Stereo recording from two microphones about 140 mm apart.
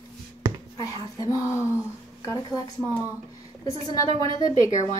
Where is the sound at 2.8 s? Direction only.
10° right (ahead or behind).